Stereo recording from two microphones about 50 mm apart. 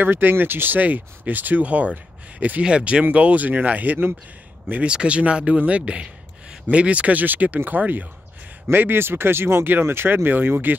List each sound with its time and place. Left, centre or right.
0.0 s speech: right
4.8 s speech: right
8.6 s speech: right